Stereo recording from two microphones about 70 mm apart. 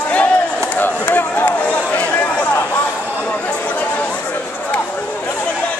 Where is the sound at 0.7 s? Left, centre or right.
Left.